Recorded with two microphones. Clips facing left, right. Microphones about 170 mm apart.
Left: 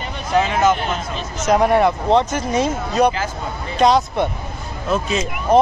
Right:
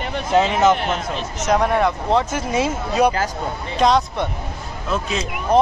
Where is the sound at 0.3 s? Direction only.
25° right (ahead or behind).